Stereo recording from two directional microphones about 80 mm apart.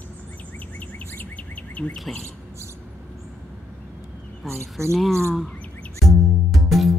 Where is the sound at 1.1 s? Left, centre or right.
Left.